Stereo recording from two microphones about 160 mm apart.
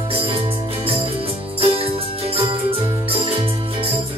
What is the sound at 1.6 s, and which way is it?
Music, 35° right (ahead or behind).